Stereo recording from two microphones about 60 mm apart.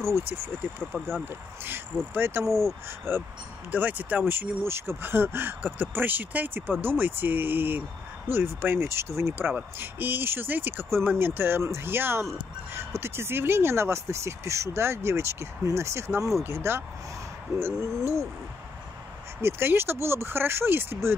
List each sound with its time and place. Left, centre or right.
0.1 s speech: right
0.9 s speech: centre
1.2 s speech: right
3.7 s speech: right
19.4 s speech: right